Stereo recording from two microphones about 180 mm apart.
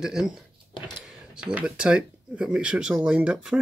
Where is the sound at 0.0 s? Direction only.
Centre (ahead or behind).